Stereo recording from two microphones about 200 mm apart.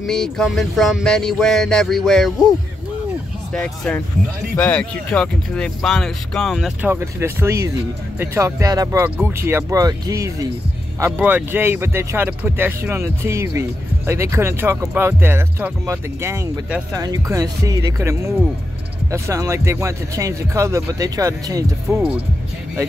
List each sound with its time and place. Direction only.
0.0 s speech: centre (ahead or behind)
3.5 s speech: 5° left (ahead or behind)